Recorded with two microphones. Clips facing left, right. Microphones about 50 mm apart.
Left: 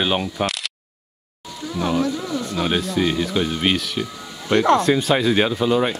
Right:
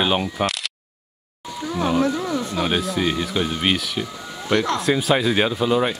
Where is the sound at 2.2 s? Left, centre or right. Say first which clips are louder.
Right 2 dB; right.